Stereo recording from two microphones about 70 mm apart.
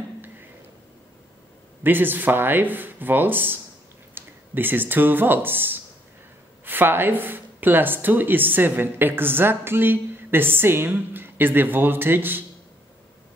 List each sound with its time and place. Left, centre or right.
1.8 s speech: right